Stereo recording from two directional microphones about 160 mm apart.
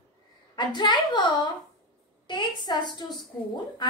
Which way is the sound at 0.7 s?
30° left (ahead or behind).